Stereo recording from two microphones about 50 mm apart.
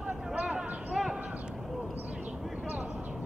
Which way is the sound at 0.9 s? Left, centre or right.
Centre.